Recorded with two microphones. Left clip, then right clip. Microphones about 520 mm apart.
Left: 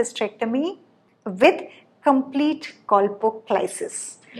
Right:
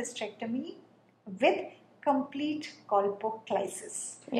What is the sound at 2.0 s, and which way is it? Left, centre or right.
A woman's voice, left.